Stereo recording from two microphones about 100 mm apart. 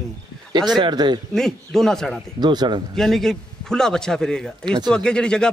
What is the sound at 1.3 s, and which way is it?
Speech, 5° left (ahead or behind).